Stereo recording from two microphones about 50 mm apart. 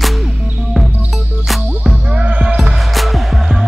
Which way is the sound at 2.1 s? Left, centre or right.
Right.